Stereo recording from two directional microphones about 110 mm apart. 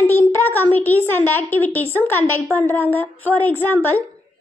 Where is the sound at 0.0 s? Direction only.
15° left (ahead or behind).